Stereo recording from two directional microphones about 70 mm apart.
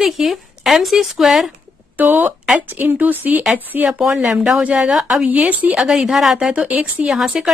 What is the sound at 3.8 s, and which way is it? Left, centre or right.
Speech, centre.